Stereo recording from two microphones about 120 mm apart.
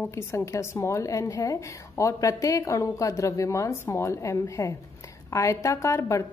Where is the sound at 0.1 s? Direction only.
25° left (ahead or behind).